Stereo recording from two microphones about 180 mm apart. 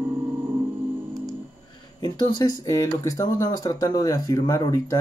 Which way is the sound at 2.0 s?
20° left (ahead or behind).